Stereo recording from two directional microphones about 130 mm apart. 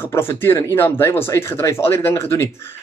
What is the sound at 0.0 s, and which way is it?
Speech, 20° left (ahead or behind).